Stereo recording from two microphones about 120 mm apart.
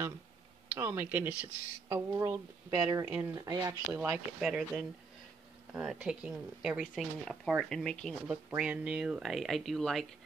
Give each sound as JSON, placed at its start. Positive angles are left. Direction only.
{"t": 0.7, "sound": "speech", "side_deg": -15}
{"t": 4.0, "sound": "speech", "side_deg": -10}
{"t": 5.9, "sound": "speech", "side_deg": -5}
{"t": 8.5, "sound": "speech", "side_deg": -5}